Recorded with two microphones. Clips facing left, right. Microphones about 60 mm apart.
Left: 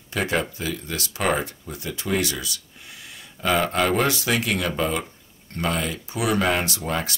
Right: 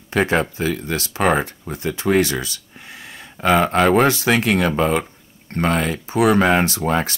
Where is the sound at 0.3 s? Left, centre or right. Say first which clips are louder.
Right 6 dB; right.